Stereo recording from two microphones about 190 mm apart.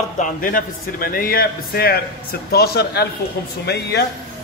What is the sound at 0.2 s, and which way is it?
A man's voice, 50° left (ahead or behind).